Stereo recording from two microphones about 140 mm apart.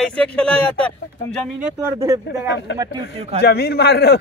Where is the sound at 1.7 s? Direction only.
20° right (ahead or behind).